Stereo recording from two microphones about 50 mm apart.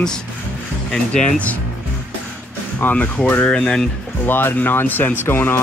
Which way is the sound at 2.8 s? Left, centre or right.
Left.